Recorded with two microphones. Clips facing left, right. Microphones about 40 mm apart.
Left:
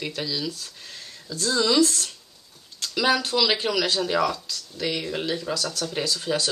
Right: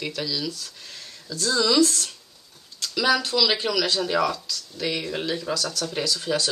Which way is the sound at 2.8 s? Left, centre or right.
Centre.